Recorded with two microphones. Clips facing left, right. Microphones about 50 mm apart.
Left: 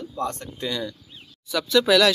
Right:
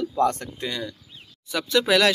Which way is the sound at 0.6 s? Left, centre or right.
Right.